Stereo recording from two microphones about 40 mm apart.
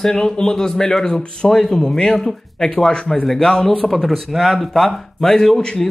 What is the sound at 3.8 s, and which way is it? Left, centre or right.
Speech, centre.